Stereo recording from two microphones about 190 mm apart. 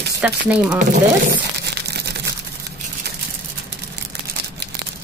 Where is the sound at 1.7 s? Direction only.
60° right (ahead or behind).